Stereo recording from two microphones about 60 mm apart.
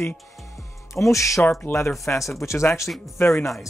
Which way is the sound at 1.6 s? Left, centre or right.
Left.